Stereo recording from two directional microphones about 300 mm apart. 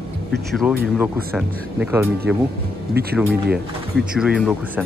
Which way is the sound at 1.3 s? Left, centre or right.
Centre.